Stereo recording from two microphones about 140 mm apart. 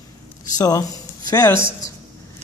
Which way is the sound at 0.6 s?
25° left (ahead or behind).